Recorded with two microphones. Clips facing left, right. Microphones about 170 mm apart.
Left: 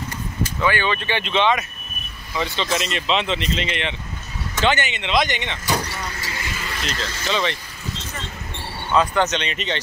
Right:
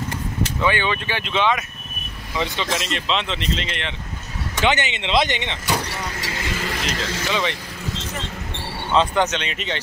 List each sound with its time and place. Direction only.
0.6 s speech: 20° right (ahead or behind)
2.3 s speech: 15° right (ahead or behind)
2.8 s speech: 5° left (ahead or behind)
4.6 s speech: 20° right (ahead or behind)
6.2 s vehicle: 85° right
7.2 s speech: 15° right (ahead or behind)
8.9 s speech: 25° right (ahead or behind)
9.2 s speech: 10° right (ahead or behind)